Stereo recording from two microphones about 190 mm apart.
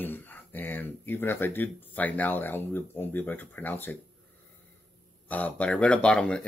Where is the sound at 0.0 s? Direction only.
10° left (ahead or behind).